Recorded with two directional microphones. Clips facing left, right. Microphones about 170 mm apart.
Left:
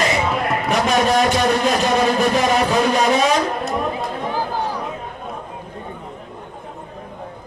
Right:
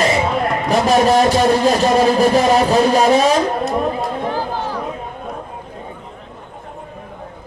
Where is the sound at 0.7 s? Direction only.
30° right (ahead or behind).